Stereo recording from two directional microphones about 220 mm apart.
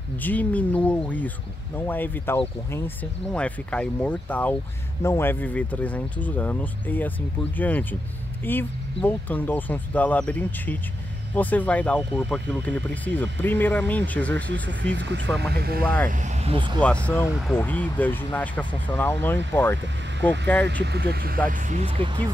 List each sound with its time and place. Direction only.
0.2 s speech: 5° left (ahead or behind)
14.5 s speech: 55° right (ahead or behind)
15.8 s speech: 5° left (ahead or behind)
16.1 s speech: 35° right (ahead or behind)
16.8 s speech: 5° left (ahead or behind)
20.8 s speech: 50° right (ahead or behind); by 22.2 s 25° right (ahead or behind)